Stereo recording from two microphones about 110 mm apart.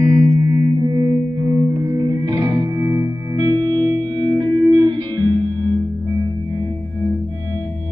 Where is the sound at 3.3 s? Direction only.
45° right (ahead or behind).